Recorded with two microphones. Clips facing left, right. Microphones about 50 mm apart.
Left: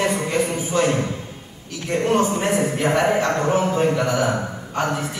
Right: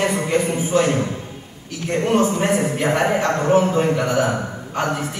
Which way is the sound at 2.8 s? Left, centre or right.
Right.